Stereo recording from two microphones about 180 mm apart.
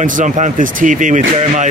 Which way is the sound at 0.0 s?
45° right (ahead or behind).